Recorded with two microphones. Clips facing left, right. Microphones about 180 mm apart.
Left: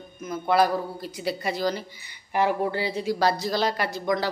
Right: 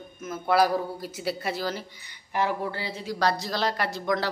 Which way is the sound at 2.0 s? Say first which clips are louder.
Left 3 dB; 15° left (ahead or behind).